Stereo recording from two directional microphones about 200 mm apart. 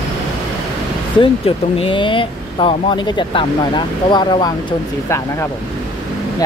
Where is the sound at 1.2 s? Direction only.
25° left (ahead or behind).